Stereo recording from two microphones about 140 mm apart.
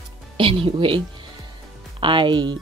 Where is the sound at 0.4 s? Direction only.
40° right (ahead or behind).